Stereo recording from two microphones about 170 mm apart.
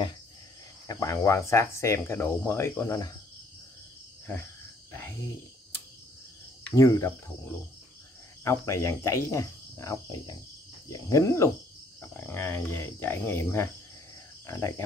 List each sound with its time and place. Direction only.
0.8 s speech: 20° left (ahead or behind)
6.7 s speech: 15° left (ahead or behind)